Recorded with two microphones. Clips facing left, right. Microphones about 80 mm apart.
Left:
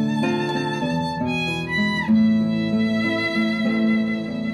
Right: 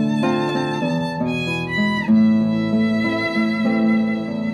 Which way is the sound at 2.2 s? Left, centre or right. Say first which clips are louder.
Right 2 dB; right.